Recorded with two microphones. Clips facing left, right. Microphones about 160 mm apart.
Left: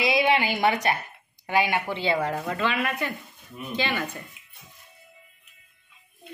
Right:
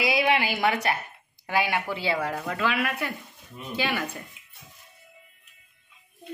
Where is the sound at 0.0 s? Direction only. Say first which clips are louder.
Left 1 dB; centre (ahead or behind).